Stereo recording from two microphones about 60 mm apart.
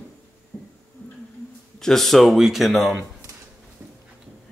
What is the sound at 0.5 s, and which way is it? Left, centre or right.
Music, left.